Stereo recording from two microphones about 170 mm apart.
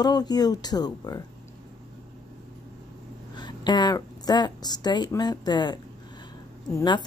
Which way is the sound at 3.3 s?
25° left (ahead or behind).